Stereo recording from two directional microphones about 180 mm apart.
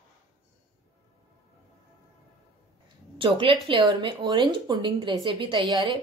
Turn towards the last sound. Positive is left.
turn(degrees=-25)  # may be behind; listen again after turning